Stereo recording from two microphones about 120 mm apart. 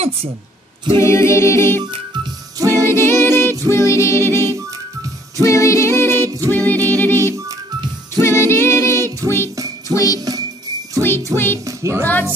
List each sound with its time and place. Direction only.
0.9 s a capella: 20° left (ahead or behind)
2.6 s music: 30° right (ahead or behind)
2.9 s a capella: 20° left (ahead or behind)
6.7 s music: 15° left (ahead or behind)
8.2 s a capella: 20° left (ahead or behind)
9.9 s music: 30° left (ahead or behind)
11.0 s music: 20° left (ahead or behind)
11.3 s a capella: 20° left (ahead or behind)
11.6 s music: 25° right (ahead or behind)